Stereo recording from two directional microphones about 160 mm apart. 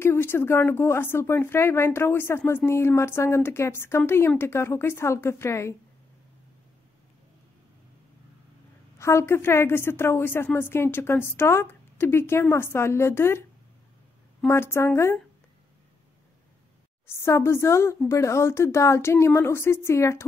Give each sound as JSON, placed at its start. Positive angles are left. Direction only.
{"t": 0.0, "sound": "a woman's voice", "side_deg": 15}
{"t": 8.9, "sound": "a woman's voice", "side_deg": 15}
{"t": 14.5, "sound": "a woman's voice", "side_deg": 15}
{"t": 17.0, "sound": "a woman's voice", "side_deg": 15}